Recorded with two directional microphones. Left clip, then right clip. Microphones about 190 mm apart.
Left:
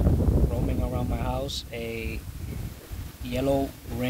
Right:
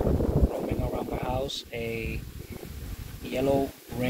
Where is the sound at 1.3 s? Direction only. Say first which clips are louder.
Even; 5° left (ahead or behind).